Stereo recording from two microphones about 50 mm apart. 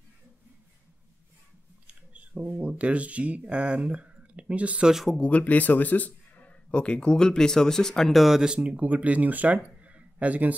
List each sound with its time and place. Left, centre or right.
2.1 s speech: right
5.2 s a man's voice: left; by 8.2 s centre
8.2 s speech: centre
8.5 s speech: right